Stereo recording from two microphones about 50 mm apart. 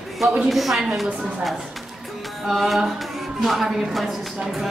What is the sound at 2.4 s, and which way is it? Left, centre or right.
A woman's voice, centre.